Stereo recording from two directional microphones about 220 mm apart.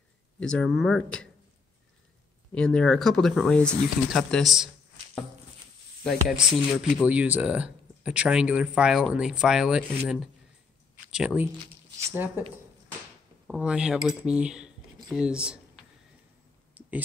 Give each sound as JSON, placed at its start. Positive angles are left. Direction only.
{"t": 0.4, "sound": "speech", "side_deg": 5}
{"t": 2.5, "sound": "speech", "side_deg": 5}
{"t": 6.0, "sound": "speech", "side_deg": 0}
{"t": 13.5, "sound": "speech", "side_deg": -5}
{"t": 16.8, "sound": "clicking", "side_deg": -5}